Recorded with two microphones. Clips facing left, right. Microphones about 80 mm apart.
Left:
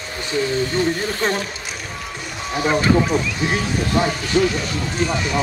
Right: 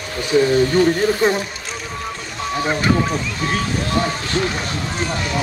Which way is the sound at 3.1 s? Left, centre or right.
Centre.